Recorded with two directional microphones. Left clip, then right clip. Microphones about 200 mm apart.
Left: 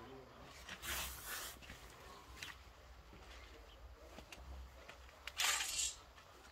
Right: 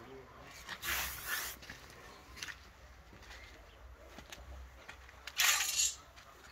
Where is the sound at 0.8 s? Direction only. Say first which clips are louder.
Right 7 dB; 40° right (ahead or behind).